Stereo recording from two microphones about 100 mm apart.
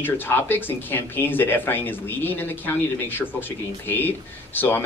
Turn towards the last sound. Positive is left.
turn(degrees=20)  # may be behind; listen again after turning